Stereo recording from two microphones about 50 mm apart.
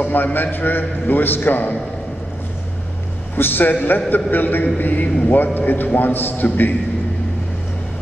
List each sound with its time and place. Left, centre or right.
0.0 s a man's voice: left
3.3 s a man's voice: left